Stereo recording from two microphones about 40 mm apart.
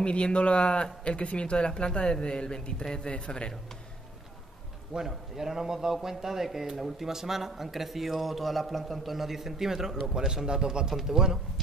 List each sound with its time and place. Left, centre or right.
0.0 s speech: left
4.9 s a man's voice: centre